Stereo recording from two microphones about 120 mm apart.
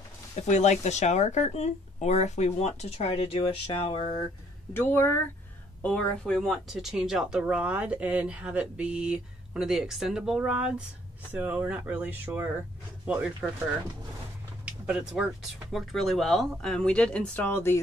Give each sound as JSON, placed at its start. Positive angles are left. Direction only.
{"t": 0.4, "sound": "speech", "side_deg": 70}
{"t": 4.7, "sound": "speech", "side_deg": 20}
{"t": 14.6, "sound": "a sound", "side_deg": -10}
{"t": 15.7, "sound": "speech", "side_deg": 0}
{"t": 17.4, "sound": "speech", "side_deg": 20}